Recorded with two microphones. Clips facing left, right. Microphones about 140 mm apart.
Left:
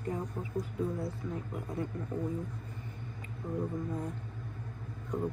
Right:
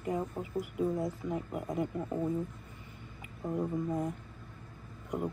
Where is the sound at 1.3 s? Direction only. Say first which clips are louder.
Right 3 dB; 70° right (ahead or behind).